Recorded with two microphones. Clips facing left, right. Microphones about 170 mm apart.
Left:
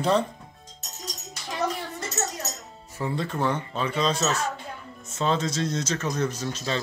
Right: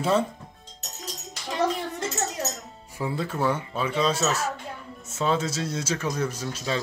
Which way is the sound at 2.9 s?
5° right (ahead or behind).